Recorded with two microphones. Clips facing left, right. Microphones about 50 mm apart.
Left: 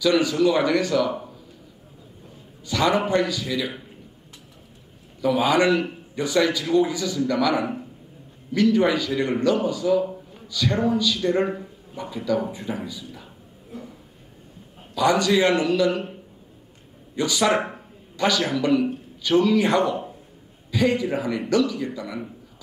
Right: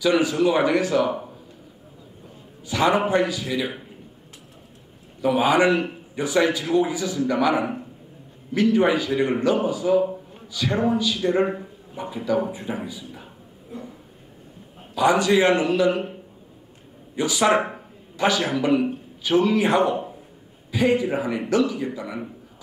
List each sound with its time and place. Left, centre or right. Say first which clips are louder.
0.0 s speech: even; right
2.6 s a man's voice: right 1 dB; right
5.2 s speech: right 1 dB; right
11.1 s speech: right 1 dB; centre
13.7 s a sound: right 2 dB; centre
15.0 s speech: right 1 dB; right
15.9 s a man's voice: right 2 dB; centre
17.1 s speech: right 1 dB; right
17.5 s speech: right 2 dB; centre
18.1 s a sound: right 1 dB; right
18.5 s speech: even; right